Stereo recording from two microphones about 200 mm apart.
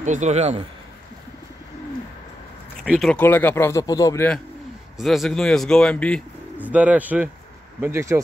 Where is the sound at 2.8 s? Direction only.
Centre (ahead or behind); by 4.3 s 15° left (ahead or behind).